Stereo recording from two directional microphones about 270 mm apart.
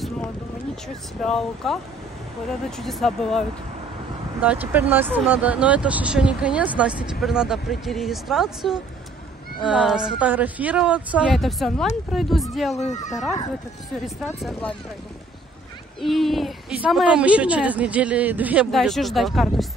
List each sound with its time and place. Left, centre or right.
1.2 s speech: centre
2.8 s speech: centre
12.7 s speech: left
14.0 s speech: centre
16.0 s speech: centre